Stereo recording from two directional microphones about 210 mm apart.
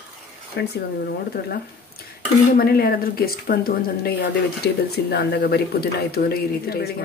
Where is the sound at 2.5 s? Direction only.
45° left (ahead or behind).